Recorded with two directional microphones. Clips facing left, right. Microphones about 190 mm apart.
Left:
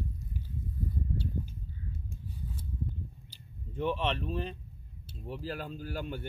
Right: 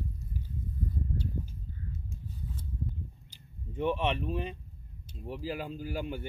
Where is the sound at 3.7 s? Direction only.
10° right (ahead or behind).